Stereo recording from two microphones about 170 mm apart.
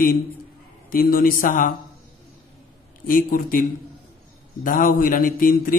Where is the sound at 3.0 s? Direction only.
55° left (ahead or behind).